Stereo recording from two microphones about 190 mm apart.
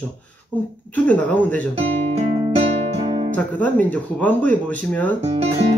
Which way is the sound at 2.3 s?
30° right (ahead or behind).